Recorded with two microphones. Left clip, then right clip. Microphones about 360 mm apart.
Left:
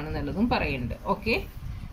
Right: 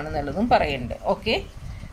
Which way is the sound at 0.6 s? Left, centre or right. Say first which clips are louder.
Right 5 dB; right.